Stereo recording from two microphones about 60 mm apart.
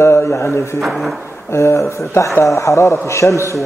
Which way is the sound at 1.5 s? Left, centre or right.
Left.